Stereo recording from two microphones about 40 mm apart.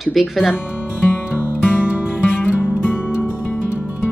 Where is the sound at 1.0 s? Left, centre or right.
Left.